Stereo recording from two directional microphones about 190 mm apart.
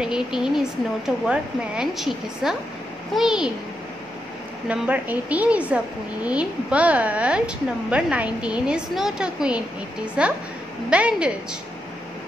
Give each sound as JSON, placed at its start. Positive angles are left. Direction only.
{"t": 0.0, "sound": "a woman's voice", "side_deg": -5}
{"t": 4.6, "sound": "a woman's voice", "side_deg": -5}